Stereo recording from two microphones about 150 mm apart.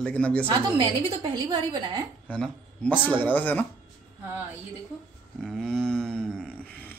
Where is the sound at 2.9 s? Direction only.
10° right (ahead or behind).